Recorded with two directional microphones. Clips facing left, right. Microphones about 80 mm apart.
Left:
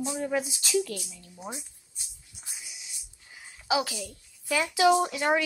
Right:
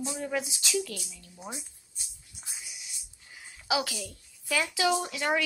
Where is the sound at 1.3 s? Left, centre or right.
Centre.